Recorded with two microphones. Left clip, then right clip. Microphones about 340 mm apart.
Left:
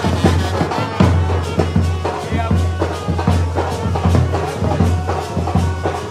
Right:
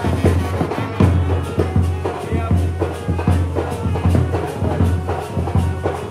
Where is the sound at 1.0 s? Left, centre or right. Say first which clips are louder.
Left 2 dB; left.